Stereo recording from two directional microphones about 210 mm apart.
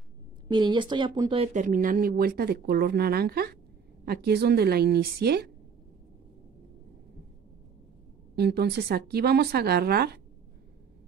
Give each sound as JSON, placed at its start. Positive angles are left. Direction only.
{"t": 0.5, "sound": "speech", "side_deg": -20}
{"t": 8.4, "sound": "speech", "side_deg": -50}